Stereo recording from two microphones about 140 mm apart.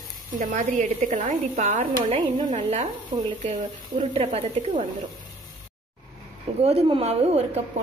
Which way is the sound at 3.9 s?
45° right (ahead or behind).